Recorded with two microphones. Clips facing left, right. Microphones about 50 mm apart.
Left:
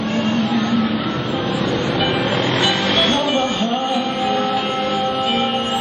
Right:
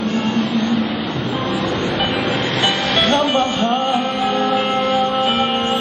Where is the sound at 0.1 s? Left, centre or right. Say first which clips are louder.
Left 2 dB; left.